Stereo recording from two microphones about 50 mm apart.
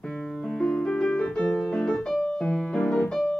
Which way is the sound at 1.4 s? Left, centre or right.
Left.